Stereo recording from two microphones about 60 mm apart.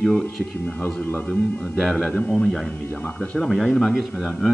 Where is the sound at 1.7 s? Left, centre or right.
Centre.